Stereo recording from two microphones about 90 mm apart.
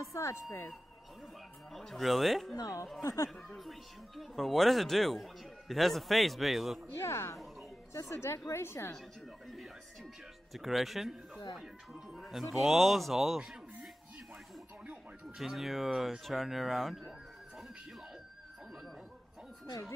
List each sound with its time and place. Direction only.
0.1 s speech: 35° left (ahead or behind)
1.7 s a man's voice: centre (ahead or behind)
2.5 s a woman's voice: 40° left (ahead or behind)
3.4 s a man's voice: centre (ahead or behind)
7.0 s a woman's voice: 30° left (ahead or behind)
10.5 s a man's voice: centre (ahead or behind)
14.9 s a man's voice: 5° right (ahead or behind)